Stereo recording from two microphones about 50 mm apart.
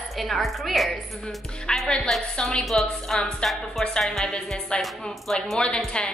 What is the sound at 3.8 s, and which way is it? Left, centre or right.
Speech, centre.